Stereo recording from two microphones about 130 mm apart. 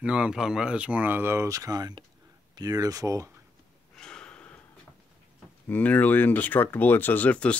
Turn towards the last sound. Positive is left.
turn(degrees=10)  # may be behind; listen again after turning